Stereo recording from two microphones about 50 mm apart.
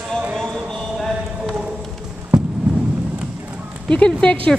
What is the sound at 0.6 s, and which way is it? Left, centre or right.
Clip-clop, centre.